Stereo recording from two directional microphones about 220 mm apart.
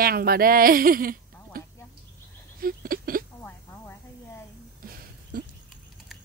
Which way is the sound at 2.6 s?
40° right (ahead or behind).